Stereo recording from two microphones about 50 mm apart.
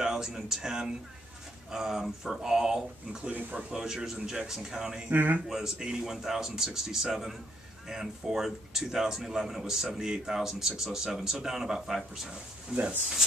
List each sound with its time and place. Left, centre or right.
0.0 s speech: centre
5.1 s speech: right
5.5 s speech: centre